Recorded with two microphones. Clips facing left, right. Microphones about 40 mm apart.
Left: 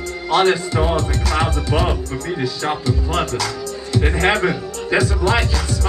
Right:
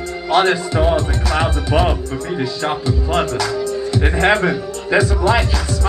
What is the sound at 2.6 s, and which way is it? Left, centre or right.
Speech, centre.